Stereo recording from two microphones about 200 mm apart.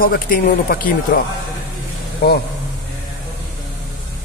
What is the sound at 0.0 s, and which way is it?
Speech, 45° left (ahead or behind).